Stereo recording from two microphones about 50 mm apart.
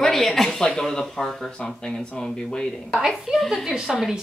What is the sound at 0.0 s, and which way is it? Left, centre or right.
Speech, centre.